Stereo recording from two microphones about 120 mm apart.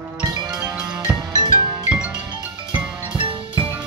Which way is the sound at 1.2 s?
35° right (ahead or behind).